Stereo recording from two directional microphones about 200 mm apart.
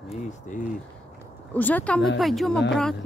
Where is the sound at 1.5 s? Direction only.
10° left (ahead or behind).